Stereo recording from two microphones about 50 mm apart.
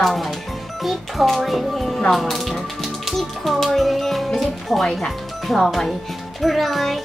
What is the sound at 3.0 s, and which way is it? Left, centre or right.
Music, centre.